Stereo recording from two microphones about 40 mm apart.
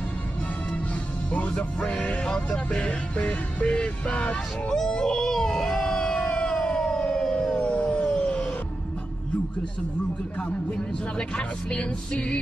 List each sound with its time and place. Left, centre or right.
1.9 s speech: left
2.7 s music: left
4.6 s a sound: centre
6.8 s siren: centre
7.4 s a sound: left
10.7 s speech: left